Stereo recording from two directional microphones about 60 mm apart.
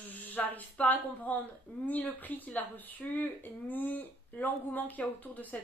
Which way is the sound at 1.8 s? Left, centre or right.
Left.